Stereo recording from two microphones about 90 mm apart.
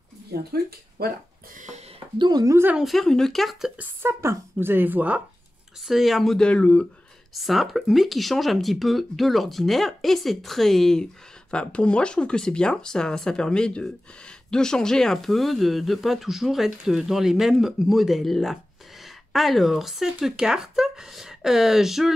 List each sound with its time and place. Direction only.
2.1 s speech: 55° right (ahead or behind)
2.8 s speech: centre (ahead or behind)
3.7 s speech: 20° right (ahead or behind)
5.9 s speech: centre (ahead or behind); by 6.9 s 15° left (ahead or behind)
7.3 s speech: centre (ahead or behind)